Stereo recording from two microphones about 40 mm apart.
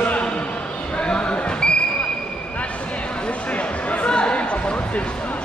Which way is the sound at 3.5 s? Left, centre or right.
Left.